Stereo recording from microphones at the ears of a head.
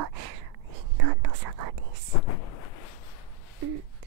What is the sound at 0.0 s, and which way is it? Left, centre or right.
Whispering, right.